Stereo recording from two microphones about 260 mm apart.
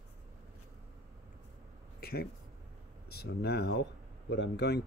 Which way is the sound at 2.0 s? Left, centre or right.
Left.